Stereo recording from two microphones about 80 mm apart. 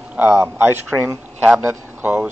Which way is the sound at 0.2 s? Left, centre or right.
Right.